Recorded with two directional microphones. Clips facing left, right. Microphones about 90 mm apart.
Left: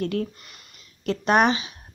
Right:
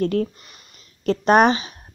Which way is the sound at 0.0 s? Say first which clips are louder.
Right 5 dB; 40° right (ahead or behind).